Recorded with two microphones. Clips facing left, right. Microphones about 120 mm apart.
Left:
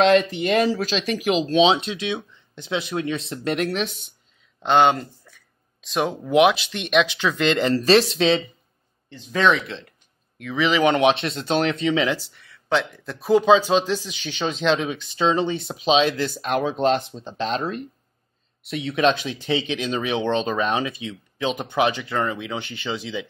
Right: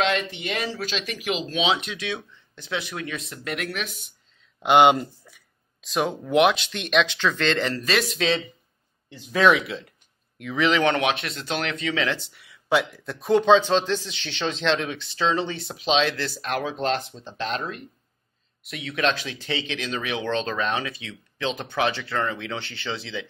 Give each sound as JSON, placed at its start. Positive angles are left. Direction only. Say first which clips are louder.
{"t": 0.0, "sound": "speech", "louder": "left 8 dB", "side_deg": 40}
{"t": 4.6, "sound": "speech", "louder": "right 1 dB", "side_deg": -15}
{"t": 5.8, "sound": "speech", "louder": "left 1 dB", "side_deg": 0}
{"t": 7.7, "sound": "speech", "louder": "left 8 dB", "side_deg": 30}
{"t": 9.1, "sound": "speech", "louder": "right 1 dB", "side_deg": -10}
{"t": 10.9, "sound": "speech", "louder": "left 5 dB", "side_deg": 20}
{"t": 12.2, "sound": "speech", "louder": "even", "side_deg": -5}